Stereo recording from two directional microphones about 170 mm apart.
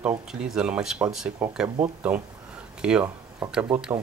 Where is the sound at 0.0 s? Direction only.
5° right (ahead or behind).